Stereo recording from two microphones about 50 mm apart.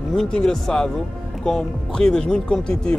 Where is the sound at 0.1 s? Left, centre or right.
Centre.